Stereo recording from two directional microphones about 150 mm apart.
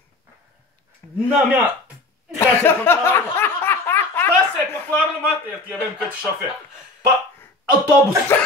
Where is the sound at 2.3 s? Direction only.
15° left (ahead or behind).